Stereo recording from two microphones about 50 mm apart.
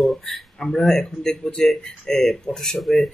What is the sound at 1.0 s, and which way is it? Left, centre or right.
Speech, centre.